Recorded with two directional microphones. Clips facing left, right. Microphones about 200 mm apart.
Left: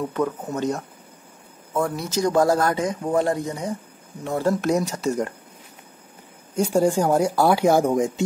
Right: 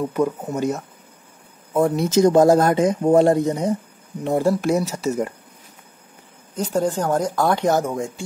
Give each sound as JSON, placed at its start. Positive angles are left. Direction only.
{"t": 0.0, "sound": "speech", "side_deg": -10}
{"t": 1.7, "sound": "speech", "side_deg": -20}
{"t": 4.4, "sound": "speech", "side_deg": -5}
{"t": 6.5, "sound": "speech", "side_deg": 10}